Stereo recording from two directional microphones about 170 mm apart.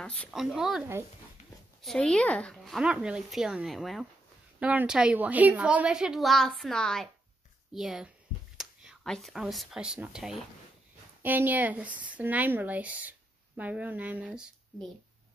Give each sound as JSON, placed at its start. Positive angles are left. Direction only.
{"t": 0.0, "sound": "a woman's voice", "side_deg": 5}